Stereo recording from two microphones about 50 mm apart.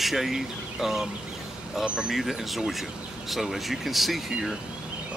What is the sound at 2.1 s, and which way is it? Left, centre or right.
Speech, centre.